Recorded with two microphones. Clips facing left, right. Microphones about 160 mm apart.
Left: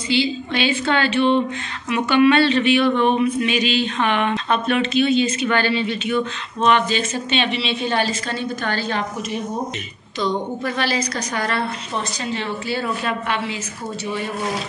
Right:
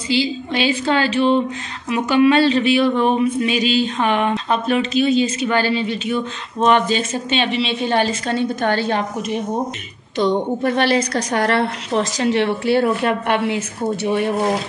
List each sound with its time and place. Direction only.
0.1 s a woman's voice: 40° right (ahead or behind); by 13.6 s 60° right (ahead or behind)